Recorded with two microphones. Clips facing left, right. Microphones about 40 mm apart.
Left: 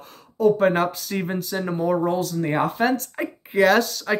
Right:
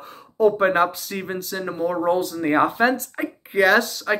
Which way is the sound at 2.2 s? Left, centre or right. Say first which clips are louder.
Right 3 dB; centre.